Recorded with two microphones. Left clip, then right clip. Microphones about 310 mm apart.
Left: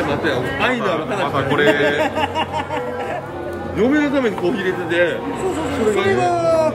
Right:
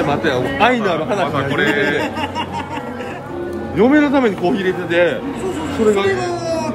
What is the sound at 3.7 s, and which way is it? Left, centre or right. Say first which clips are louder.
Speech: right 4 dB; centre.